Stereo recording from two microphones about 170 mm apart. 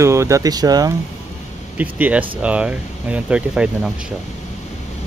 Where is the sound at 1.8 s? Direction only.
10° right (ahead or behind).